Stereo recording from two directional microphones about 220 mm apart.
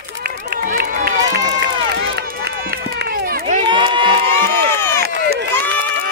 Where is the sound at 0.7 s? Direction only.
45° right (ahead or behind).